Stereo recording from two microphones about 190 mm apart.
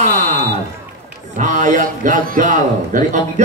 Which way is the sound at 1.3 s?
45° right (ahead or behind).